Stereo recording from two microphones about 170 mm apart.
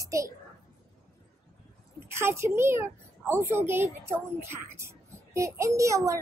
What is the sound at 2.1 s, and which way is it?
A child's voice, 15° right (ahead or behind).